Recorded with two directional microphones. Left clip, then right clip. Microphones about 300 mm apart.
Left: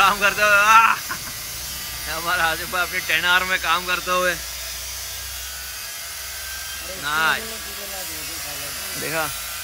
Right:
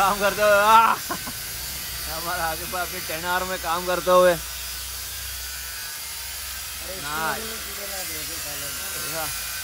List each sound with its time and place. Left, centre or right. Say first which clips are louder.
0.0 s speech: left 3 dB; centre
2.1 s speech: left 6 dB; centre
4.1 s speech: right 6 dB; left
7.1 s speech: left 7 dB; centre